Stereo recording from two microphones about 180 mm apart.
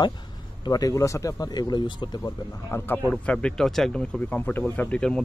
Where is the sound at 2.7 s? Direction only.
15° left (ahead or behind).